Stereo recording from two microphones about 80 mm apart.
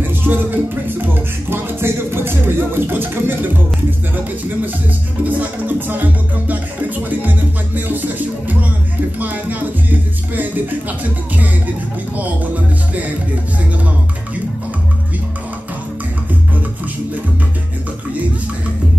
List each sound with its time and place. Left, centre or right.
0.0 s music: right
4.1 s speech: right
5.2 s music: right
9.2 s speech: right